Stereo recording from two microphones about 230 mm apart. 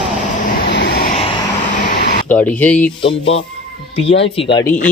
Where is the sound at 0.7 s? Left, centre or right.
Left.